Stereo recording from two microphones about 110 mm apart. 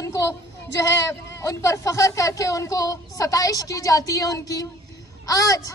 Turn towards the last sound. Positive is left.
turn(degrees=30)  # may be behind; listen again after turning